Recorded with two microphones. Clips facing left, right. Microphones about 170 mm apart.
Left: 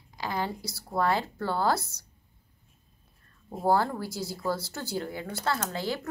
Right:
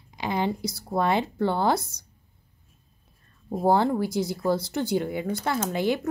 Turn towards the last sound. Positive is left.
turn(degrees=-20)  # may be behind; listen again after turning